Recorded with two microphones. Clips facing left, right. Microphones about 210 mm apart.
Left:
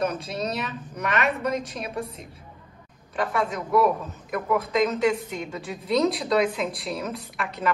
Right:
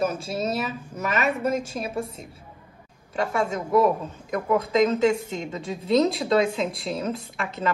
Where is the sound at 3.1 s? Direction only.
25° right (ahead or behind).